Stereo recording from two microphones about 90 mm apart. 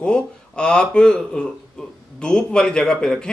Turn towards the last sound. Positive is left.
turn(degrees=10)  # may be behind; listen again after turning